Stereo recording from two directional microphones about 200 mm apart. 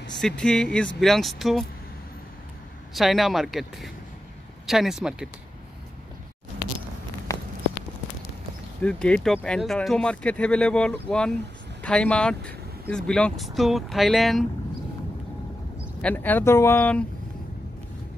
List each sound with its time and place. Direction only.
0.2 s speech: 5° left (ahead or behind)
2.9 s speech: centre (ahead or behind)
7.3 s a sound: 15° left (ahead or behind)
8.8 s speech: 5° left (ahead or behind)
16.0 s speech: 10° left (ahead or behind)